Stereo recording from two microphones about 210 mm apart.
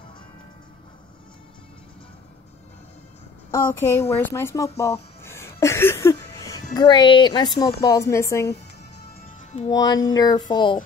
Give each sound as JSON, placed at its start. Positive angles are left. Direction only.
{"t": 3.5, "sound": "music", "side_deg": 10}
{"t": 5.2, "sound": "speech", "side_deg": 10}
{"t": 9.7, "sound": "music", "side_deg": 20}
{"t": 10.5, "sound": "speech", "side_deg": 20}